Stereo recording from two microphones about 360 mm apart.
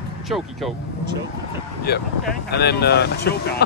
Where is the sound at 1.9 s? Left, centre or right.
Left.